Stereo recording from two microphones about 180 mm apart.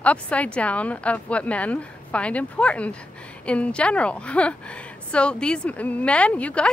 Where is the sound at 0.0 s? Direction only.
5° left (ahead or behind).